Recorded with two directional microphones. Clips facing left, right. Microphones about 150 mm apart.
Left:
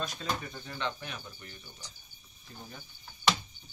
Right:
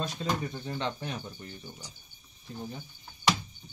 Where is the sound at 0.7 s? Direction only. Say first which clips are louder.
Right 1 dB; 30° right (ahead or behind).